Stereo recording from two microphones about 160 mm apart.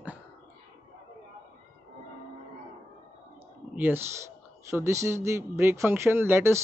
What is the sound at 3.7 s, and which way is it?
Speech, 10° right (ahead or behind).